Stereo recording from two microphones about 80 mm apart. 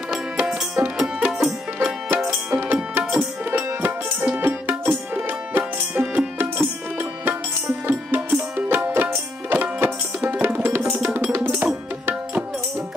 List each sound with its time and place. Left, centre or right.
0.1 s music: centre
2.0 s music: centre
11.3 s tabla: right